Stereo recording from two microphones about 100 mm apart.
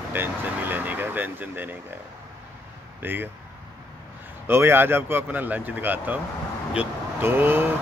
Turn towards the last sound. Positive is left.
turn(degrees=-20)  # may be behind; listen again after turning